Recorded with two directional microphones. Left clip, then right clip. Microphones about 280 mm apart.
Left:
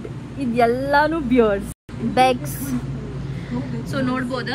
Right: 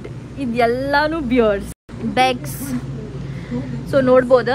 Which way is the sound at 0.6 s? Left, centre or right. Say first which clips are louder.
Even; right.